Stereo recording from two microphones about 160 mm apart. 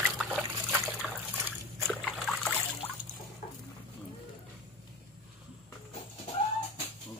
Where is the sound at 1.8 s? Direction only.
5° left (ahead or behind).